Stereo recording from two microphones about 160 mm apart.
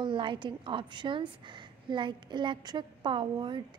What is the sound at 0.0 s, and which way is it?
A woman's voice, 30° right (ahead or behind).